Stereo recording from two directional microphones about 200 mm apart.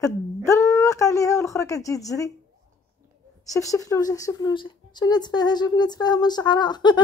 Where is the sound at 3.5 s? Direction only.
15° left (ahead or behind).